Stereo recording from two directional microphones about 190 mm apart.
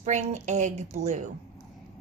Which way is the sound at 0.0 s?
40° right (ahead or behind).